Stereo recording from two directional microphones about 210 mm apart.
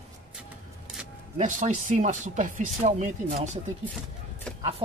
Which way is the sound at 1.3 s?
35° right (ahead or behind).